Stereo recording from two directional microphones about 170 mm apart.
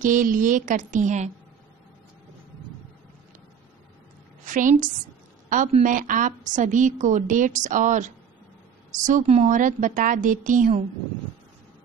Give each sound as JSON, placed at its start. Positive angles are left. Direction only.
{"t": 0.0, "sound": "a woman's voice", "side_deg": -50}
{"t": 4.5, "sound": "a woman's voice", "side_deg": -50}